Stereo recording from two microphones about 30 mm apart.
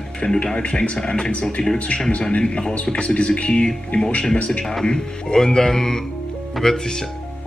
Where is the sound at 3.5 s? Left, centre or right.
Left.